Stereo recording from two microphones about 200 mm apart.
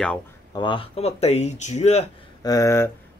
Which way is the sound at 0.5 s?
25° left (ahead or behind).